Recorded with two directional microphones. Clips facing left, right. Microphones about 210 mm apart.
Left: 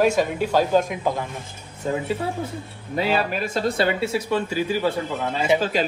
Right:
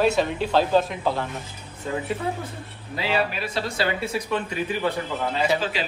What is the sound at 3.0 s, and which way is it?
Speech, 50° left (ahead or behind).